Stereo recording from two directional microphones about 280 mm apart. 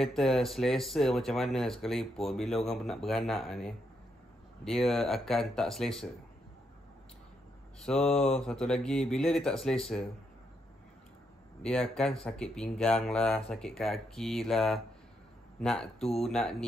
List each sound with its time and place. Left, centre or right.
0.0 s speech: centre
7.8 s speech: centre
11.6 s speech: centre